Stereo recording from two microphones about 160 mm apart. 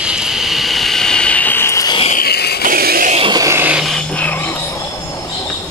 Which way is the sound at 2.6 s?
65° right (ahead or behind).